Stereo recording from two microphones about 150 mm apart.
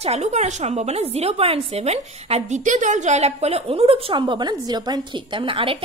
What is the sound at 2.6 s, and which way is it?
A woman's voice, 55° right (ahead or behind).